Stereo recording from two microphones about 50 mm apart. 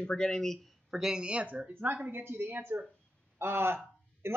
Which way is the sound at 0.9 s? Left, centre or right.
Centre.